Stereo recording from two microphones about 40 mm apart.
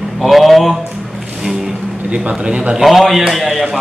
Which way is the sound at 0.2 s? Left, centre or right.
Centre.